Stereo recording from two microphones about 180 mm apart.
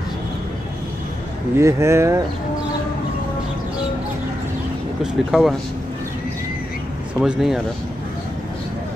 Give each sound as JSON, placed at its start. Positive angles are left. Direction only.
{"t": 1.6, "sound": "speech", "side_deg": -15}
{"t": 5.0, "sound": "speech", "side_deg": 0}
{"t": 7.2, "sound": "speech", "side_deg": 0}